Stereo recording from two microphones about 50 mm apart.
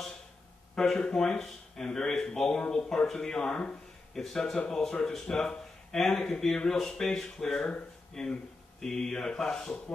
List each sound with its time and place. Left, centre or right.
0.7 s speech: centre